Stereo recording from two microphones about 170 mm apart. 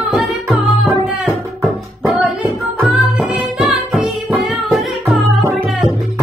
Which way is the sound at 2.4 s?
5° right (ahead or behind).